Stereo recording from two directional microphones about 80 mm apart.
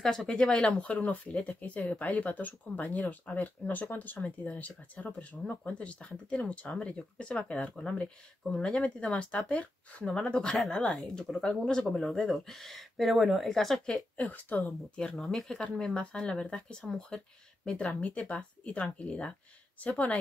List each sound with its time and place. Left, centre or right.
0.0 s a woman's voice: centre
14.1 s a woman's voice: left
18.0 s speech: centre